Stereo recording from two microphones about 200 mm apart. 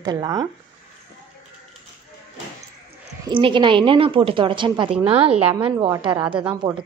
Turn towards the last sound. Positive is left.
turn(degrees=-20)  # may be behind; listen again after turning